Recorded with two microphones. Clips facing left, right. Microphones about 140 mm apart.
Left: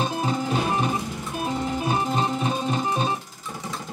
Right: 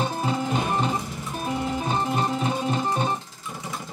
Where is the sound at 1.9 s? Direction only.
15° left (ahead or behind).